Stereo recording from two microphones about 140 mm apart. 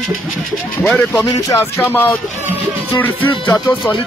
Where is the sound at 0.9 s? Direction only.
5° left (ahead or behind).